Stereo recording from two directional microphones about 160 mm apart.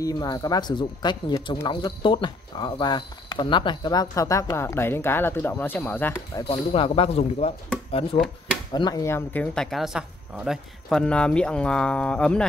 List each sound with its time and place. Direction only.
0.0 s speech: 25° left (ahead or behind)
6.4 s speech: 35° left (ahead or behind)
8.7 s speech: 25° left (ahead or behind); by 12.4 s 5° left (ahead or behind)